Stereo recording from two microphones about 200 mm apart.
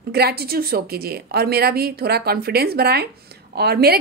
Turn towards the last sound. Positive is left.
turn(degrees=-50)  # may be behind; listen again after turning